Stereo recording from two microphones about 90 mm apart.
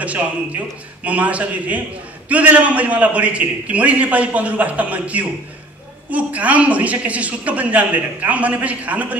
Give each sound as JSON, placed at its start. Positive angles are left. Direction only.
{"t": 0.0, "sound": "a man's voice", "side_deg": -15}